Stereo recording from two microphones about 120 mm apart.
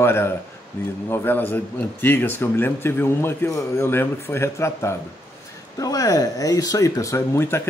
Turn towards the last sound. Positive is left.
turn(degrees=20)  # may be behind; listen again after turning